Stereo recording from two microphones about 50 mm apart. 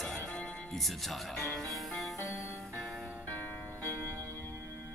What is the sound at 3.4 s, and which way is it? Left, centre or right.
Music, left.